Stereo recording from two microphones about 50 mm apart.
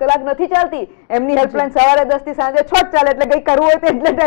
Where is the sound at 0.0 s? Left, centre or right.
Centre.